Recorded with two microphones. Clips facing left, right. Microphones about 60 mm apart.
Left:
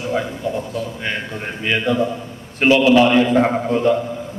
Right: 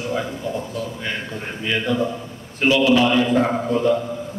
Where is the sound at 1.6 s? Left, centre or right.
Left.